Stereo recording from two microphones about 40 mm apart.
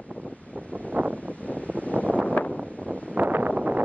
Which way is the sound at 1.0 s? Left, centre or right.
Right.